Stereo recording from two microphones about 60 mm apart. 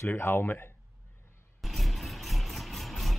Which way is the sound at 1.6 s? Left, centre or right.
Centre.